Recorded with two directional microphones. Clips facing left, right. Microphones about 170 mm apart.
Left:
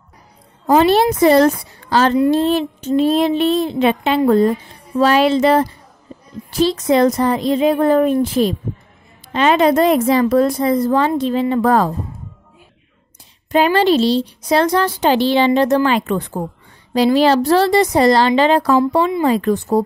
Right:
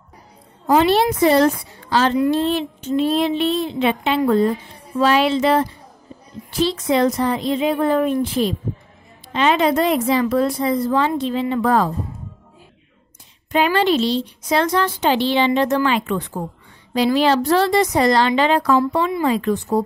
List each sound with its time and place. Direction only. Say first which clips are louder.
0.7 s a woman's voice: left 3 dB; 45° left (ahead or behind)
2.1 s a woman's voice: left 3 dB; 30° left (ahead or behind)
2.4 s a woman's voice: left 4 dB; 40° left (ahead or behind)
13.5 s a woman's voice: left 4 dB; 35° left (ahead or behind)